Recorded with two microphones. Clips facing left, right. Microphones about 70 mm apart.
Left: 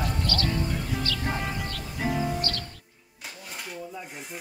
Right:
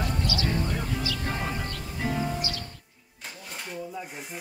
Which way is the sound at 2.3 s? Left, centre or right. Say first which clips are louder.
Left 2 dB; centre.